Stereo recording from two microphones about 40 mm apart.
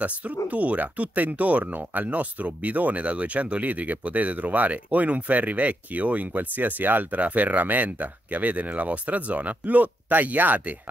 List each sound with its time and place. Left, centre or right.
0.0 s speech: right
7.2 s speech: right